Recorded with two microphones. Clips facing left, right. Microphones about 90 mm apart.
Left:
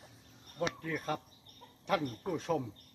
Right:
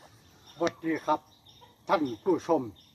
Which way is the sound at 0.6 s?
20° right (ahead or behind).